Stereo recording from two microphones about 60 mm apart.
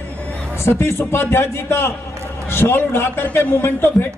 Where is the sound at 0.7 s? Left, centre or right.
Left.